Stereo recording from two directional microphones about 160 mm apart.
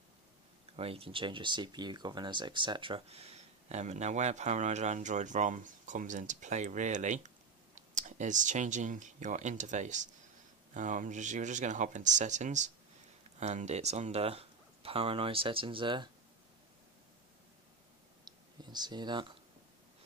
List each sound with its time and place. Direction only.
0.7 s speech: 35° right (ahead or behind)
18.2 s clicking: 25° right (ahead or behind)